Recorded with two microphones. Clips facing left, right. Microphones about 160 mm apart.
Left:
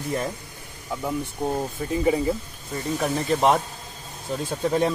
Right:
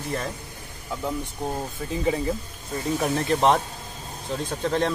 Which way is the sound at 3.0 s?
Centre (ahead or behind).